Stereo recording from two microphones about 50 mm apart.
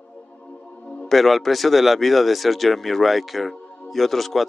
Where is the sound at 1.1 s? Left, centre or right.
Centre.